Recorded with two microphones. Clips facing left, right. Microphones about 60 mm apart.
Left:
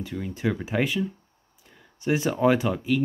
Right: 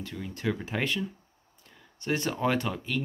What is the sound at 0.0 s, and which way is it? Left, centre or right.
Speech, centre.